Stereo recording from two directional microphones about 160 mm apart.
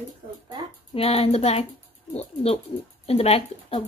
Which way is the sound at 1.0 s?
40° left (ahead or behind).